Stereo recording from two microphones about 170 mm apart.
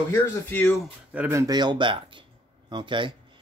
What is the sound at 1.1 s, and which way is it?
Speech, 10° right (ahead or behind).